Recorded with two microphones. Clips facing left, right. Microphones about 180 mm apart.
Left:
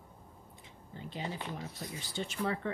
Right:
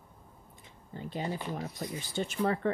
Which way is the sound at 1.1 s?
45° right (ahead or behind).